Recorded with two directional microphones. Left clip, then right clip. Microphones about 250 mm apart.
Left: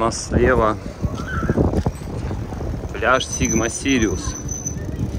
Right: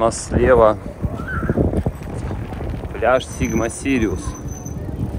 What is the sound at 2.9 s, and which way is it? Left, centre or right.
Speech, centre.